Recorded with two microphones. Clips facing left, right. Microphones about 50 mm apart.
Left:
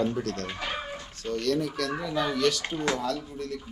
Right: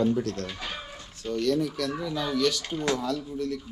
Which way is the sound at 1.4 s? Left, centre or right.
Left.